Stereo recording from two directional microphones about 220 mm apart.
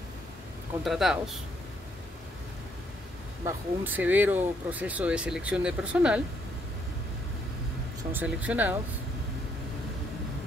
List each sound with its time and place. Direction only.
0.8 s speech: centre (ahead or behind)
3.4 s speech: 10° right (ahead or behind)
8.1 s speech: 5° right (ahead or behind)